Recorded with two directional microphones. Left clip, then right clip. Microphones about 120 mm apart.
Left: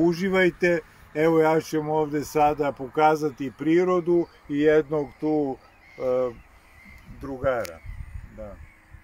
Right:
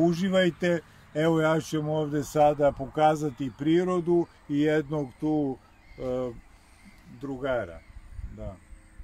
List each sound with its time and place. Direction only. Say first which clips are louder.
0.0 s speech: left 3 dB; 40° right (ahead or behind); by 5.5 s 20° right (ahead or behind)
5.9 s speech: left 7 dB; 5° right (ahead or behind)